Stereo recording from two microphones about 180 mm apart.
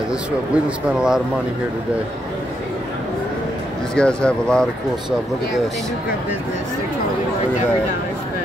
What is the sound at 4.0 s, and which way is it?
Speech, 5° left (ahead or behind).